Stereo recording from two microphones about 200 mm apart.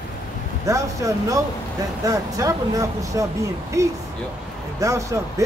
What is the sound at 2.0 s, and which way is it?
Speech, 15° right (ahead or behind).